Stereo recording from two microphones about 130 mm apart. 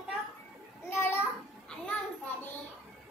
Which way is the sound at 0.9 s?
20° left (ahead or behind).